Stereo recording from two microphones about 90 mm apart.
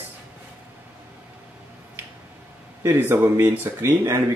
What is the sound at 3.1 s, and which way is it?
Speech, 25° right (ahead or behind).